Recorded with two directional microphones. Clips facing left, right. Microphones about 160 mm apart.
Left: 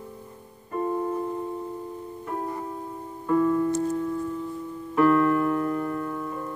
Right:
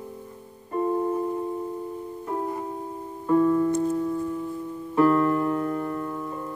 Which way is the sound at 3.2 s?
30° right (ahead or behind).